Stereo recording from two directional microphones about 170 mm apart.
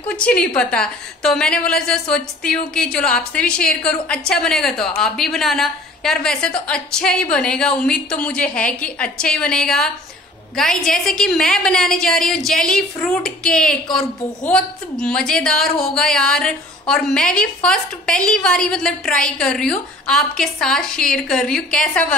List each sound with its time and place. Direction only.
0.1 s a woman's voice: 5° left (ahead or behind)